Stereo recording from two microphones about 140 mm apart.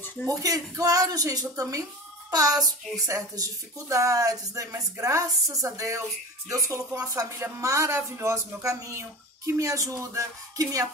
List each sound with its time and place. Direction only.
0.3 s speech: 25° right (ahead or behind)